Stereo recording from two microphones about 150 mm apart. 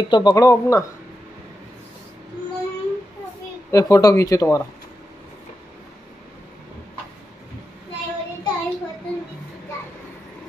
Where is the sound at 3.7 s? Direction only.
20° left (ahead or behind).